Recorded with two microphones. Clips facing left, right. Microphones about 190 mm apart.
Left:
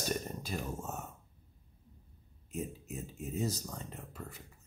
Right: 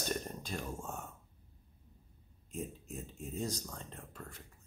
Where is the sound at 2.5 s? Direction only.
5° left (ahead or behind).